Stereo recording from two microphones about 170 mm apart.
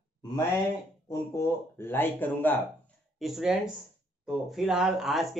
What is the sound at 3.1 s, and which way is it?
Speech, centre (ahead or behind).